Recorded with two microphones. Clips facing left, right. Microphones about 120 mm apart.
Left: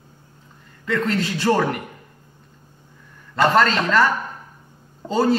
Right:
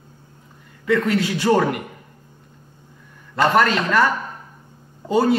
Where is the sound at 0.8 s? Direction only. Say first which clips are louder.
Right 3 dB; 15° right (ahead or behind).